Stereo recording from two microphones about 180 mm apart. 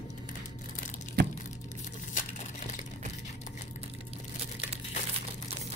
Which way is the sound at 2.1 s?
45° left (ahead or behind).